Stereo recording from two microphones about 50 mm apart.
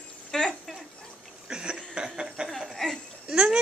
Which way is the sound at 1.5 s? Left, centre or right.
Centre.